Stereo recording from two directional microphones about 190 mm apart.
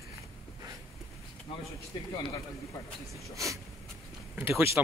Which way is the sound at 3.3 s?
15° right (ahead or behind).